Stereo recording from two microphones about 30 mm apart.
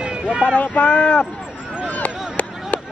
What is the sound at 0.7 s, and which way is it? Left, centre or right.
Speech, left.